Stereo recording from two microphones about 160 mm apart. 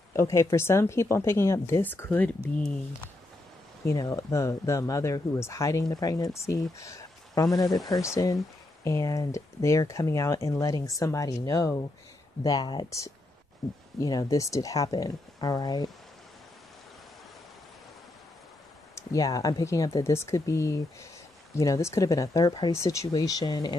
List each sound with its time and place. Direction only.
0.1 s speech: 15° left (ahead or behind)
3.8 s speech: 20° left (ahead or behind)
13.6 s speech: centre (ahead or behind)
13.9 s speech: 25° left (ahead or behind)
18.9 s speech: 20° left (ahead or behind)